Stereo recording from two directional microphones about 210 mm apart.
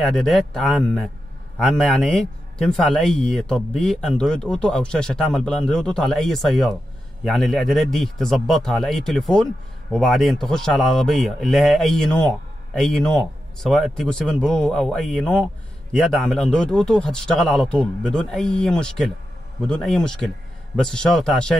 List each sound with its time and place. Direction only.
0.0 s speech: centre (ahead or behind)